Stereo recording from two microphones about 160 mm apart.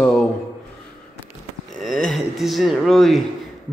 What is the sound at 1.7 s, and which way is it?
Speech, centre (ahead or behind).